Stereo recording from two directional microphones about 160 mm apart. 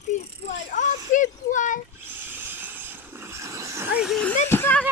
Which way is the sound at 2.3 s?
10° right (ahead or behind).